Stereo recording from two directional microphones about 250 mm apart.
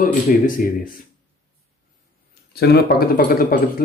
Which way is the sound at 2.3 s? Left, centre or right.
Left.